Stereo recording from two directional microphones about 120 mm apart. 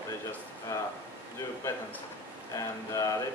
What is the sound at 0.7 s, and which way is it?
Speech, 25° left (ahead or behind).